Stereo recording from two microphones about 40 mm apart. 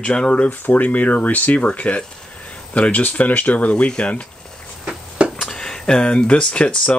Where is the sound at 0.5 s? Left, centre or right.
Left.